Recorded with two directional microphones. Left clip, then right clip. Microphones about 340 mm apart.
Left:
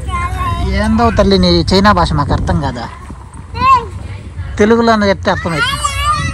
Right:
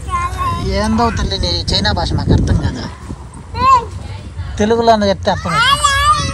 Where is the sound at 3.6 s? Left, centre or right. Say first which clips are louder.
Left 1 dB; centre.